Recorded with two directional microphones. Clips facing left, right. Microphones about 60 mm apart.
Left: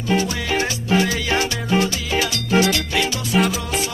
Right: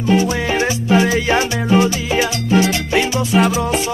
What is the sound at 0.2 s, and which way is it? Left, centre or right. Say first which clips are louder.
Music: right 5 dB; right.